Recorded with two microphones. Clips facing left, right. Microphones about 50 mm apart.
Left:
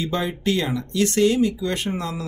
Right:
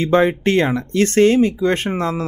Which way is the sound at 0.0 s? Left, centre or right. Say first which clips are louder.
Right 9 dB; right.